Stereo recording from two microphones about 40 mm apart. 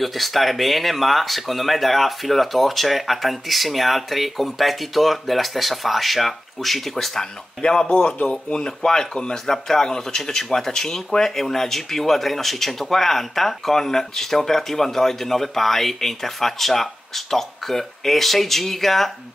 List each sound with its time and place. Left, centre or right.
0.0 s speech: centre
7.6 s speech: left; by 19.1 s centre